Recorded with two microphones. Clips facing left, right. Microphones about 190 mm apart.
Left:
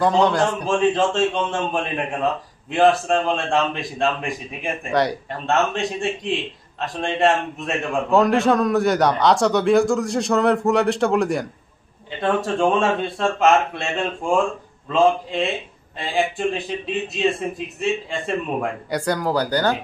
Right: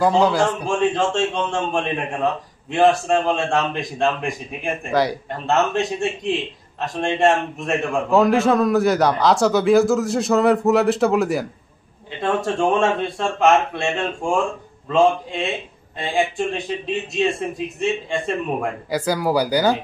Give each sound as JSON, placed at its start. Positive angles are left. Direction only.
{"t": 0.0, "sound": "speech", "side_deg": -5}